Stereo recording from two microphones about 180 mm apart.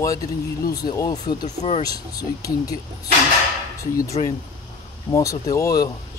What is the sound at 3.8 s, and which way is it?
Speech, 15° left (ahead or behind).